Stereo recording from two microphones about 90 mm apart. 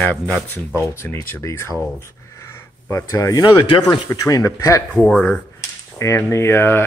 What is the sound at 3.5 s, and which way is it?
Speech, 65° left (ahead or behind).